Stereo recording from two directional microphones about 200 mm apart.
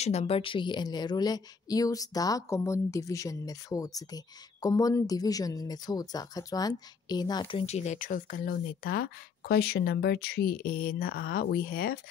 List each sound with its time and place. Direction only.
0.0 s a woman's voice: 35° left (ahead or behind)